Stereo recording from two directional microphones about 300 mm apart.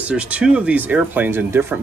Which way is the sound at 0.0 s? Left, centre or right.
Centre.